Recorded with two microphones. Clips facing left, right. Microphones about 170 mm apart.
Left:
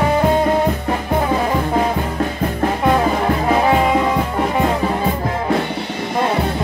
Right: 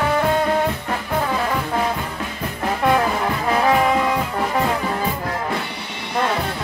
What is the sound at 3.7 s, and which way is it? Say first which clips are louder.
Brass instrument: right 1 dB; 25° left (ahead or behind).